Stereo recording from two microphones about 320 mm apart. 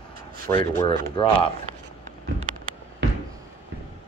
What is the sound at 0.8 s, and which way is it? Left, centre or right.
Speech, centre.